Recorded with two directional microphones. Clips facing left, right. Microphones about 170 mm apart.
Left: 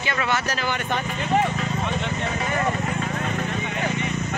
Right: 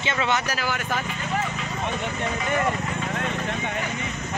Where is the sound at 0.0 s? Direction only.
20° right (ahead or behind).